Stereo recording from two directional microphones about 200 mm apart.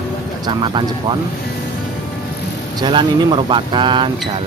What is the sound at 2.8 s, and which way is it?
Speech, 20° right (ahead or behind).